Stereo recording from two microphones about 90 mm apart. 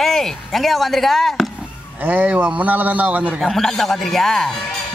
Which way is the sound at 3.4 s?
5° left (ahead or behind).